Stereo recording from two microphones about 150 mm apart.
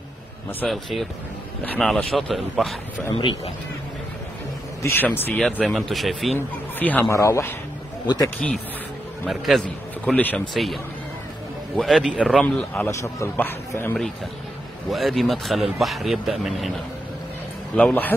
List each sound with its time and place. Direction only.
0.7 s speech: centre (ahead or behind)
3.2 s speech: 35° left (ahead or behind)
4.8 s speech: 15° left (ahead or behind)
6.3 s speech: 10° left (ahead or behind)
8.4 s speech: 5° left (ahead or behind)
14.9 s speech: centre (ahead or behind)
17.7 s speech: 10° left (ahead or behind)